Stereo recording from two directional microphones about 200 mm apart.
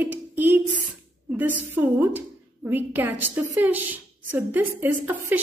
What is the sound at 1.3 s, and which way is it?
A woman's voice, 10° right (ahead or behind).